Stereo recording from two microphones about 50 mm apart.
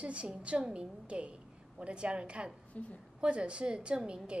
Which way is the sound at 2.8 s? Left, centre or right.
Left.